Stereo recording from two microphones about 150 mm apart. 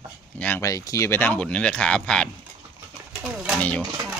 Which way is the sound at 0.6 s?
20° left (ahead or behind).